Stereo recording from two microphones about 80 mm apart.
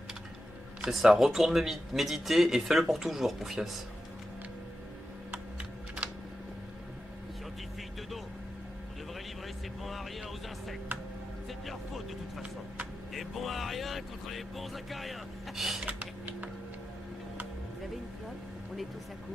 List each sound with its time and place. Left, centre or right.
0.8 s speech: centre
11.6 s music: centre
15.8 s computer keyboard: centre